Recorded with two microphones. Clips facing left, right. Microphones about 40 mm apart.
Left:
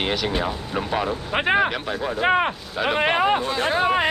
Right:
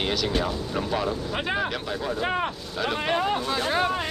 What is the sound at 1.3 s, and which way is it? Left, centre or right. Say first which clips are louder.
Speech: left 11 dB; left.